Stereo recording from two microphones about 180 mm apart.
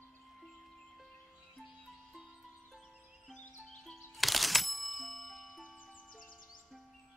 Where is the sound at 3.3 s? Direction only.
5° left (ahead or behind).